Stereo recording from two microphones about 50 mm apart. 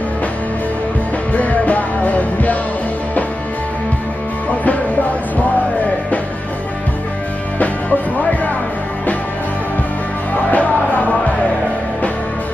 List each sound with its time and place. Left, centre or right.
1.3 s music: left
10.5 s music: left